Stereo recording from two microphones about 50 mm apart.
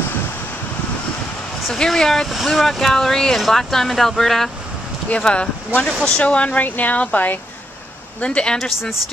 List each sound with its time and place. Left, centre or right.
1.7 s speech: centre
5.1 s speech: left
8.5 s speech: centre